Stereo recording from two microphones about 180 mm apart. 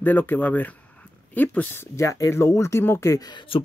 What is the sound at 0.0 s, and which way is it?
Speech, 10° left (ahead or behind).